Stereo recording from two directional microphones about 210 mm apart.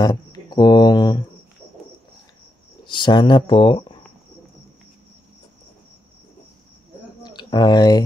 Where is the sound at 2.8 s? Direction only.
20° left (ahead or behind).